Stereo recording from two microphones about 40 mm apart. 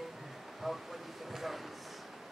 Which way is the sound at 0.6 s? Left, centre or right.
Centre.